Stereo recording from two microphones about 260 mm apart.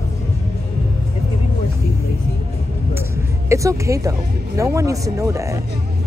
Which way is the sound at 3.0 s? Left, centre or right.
Centre.